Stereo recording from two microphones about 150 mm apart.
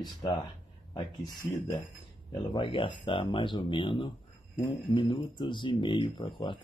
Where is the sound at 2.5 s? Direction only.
35° left (ahead or behind).